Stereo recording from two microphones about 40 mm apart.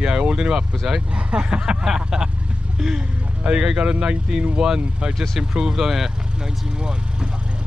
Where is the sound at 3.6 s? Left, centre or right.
Right; by 6.5 s centre.